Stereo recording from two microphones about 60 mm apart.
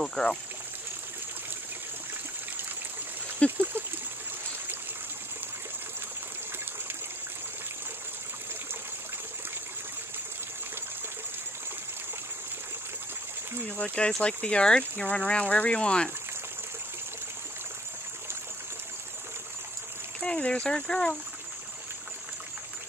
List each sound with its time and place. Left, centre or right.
0.0 s speech: centre
3.4 s a sound: right
13.7 s speech: centre
20.2 s speech: centre